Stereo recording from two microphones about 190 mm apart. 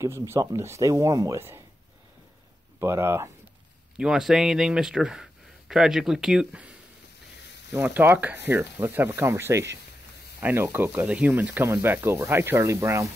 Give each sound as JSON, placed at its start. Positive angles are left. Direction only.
{"t": 0.0, "sound": "speech", "side_deg": -15}
{"t": 2.8, "sound": "speech", "side_deg": -15}
{"t": 4.0, "sound": "speech", "side_deg": -5}
{"t": 7.7, "sound": "speech", "side_deg": -10}